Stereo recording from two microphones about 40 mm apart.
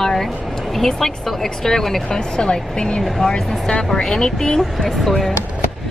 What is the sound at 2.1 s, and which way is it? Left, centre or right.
Speech, centre.